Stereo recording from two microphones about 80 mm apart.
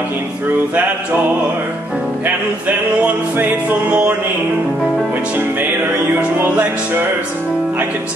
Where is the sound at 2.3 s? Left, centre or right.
Right.